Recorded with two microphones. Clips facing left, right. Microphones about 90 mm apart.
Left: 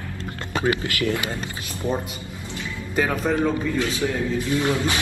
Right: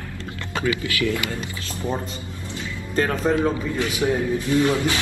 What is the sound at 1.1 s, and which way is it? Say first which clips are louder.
Speech: even; 20° left (ahead or behind).